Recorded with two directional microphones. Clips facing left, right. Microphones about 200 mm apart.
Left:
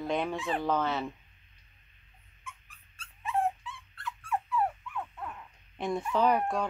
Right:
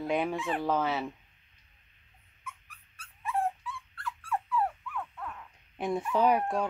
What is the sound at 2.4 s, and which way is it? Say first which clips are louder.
Dog: right 2 dB; 25° left (ahead or behind).